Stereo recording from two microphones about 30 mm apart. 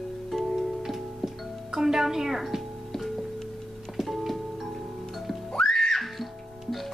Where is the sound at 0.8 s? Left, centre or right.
Centre.